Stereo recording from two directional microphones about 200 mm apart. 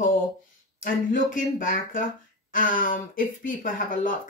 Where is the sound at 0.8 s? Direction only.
40° left (ahead or behind).